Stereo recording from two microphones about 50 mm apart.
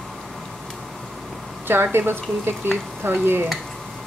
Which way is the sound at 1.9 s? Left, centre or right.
Right.